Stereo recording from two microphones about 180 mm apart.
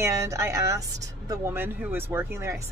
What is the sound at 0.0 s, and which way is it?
Speech, 15° right (ahead or behind).